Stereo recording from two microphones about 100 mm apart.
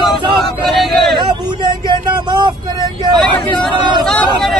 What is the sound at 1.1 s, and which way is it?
Vehicle, 50° right (ahead or behind).